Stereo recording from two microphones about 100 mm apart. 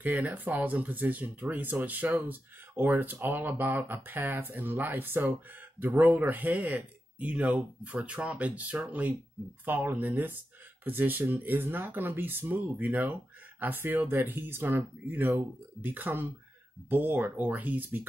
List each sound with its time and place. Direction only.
0.0 s speech: 15° right (ahead or behind)